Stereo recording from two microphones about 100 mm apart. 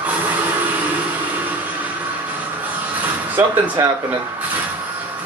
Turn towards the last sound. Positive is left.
turn(degrees=-20)  # may be behind; listen again after turning